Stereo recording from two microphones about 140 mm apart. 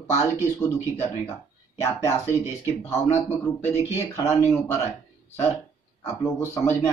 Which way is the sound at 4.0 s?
20° left (ahead or behind).